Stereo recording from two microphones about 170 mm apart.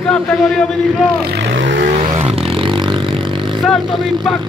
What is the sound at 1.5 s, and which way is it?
Vehicle, 90° right.